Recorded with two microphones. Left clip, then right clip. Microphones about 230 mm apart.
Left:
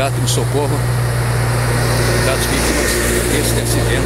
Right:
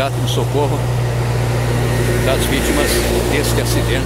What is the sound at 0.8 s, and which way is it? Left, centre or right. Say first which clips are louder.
Vehicle: left 1 dB; right.